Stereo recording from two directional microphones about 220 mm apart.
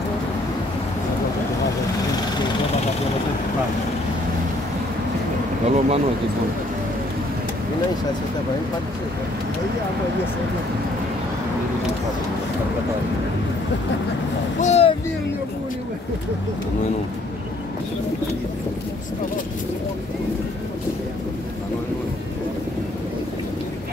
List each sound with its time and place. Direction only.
5.7 s speech: 30° right (ahead or behind)
14.6 s a child's voice: 30° left (ahead or behind)